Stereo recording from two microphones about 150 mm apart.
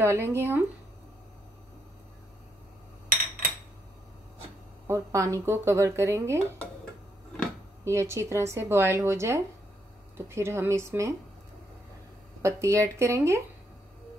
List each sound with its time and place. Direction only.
0.0 s speech: 15° right (ahead or behind)
4.8 s speech: 20° right (ahead or behind)
7.8 s speech: 20° right (ahead or behind)
12.4 s speech: 20° right (ahead or behind)